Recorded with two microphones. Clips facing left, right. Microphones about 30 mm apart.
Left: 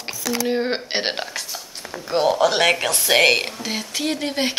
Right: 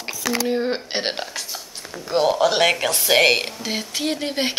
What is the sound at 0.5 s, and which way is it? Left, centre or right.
Speech, left.